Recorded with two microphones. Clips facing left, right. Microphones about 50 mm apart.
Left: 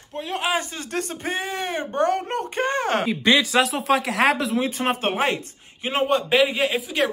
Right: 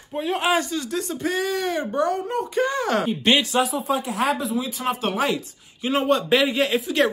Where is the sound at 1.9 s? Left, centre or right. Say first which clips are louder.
Left 3 dB; left.